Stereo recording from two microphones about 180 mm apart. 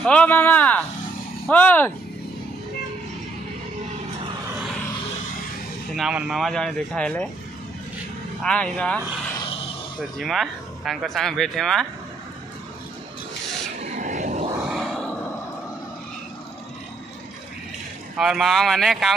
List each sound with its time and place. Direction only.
0.0 s speech: 5° left (ahead or behind)
5.9 s speech: 5° right (ahead or behind)
8.4 s speech: 5° left (ahead or behind)
10.1 s speech: centre (ahead or behind)
13.8 s a sound: 40° right (ahead or behind)
14.7 s grunt: centre (ahead or behind)
18.1 s speech: centre (ahead or behind)